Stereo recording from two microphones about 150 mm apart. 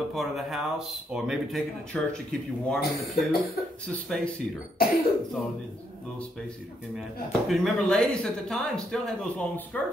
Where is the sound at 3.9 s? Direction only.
5° left (ahead or behind).